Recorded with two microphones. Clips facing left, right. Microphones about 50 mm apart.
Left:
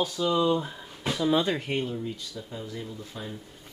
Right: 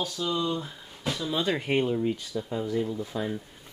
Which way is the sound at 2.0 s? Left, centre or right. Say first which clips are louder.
Right 7 dB; right.